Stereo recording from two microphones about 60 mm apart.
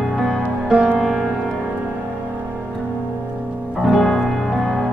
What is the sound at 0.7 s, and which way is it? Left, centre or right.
Music, centre.